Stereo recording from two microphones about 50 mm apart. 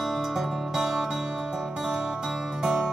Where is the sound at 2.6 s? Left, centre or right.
Centre.